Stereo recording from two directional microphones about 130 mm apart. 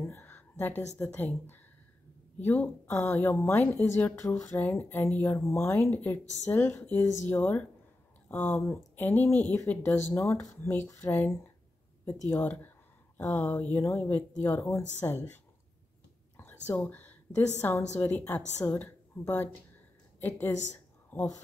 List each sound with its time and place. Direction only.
0.0 s a sound: 15° left (ahead or behind)
0.9 s speech: 15° left (ahead or behind)
16.3 s whispering: 15° left (ahead or behind)
17.6 s a woman's voice: 15° left (ahead or behind)